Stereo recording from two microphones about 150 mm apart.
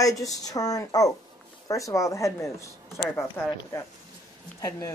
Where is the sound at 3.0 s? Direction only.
Centre (ahead or behind).